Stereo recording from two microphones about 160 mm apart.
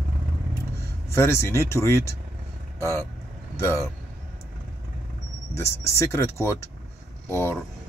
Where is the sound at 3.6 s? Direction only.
15° left (ahead or behind).